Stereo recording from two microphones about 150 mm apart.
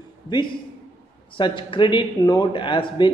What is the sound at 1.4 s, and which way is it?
Speech, 35° left (ahead or behind).